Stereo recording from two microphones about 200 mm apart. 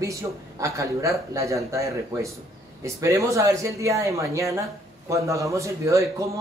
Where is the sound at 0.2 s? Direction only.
20° right (ahead or behind).